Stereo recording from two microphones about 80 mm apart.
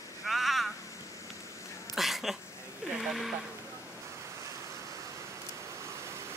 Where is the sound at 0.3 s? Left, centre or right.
Centre.